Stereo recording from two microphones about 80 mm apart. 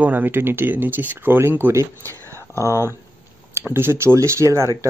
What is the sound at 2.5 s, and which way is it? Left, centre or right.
Speech, left.